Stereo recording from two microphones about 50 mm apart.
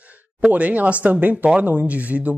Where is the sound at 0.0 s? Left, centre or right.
Right.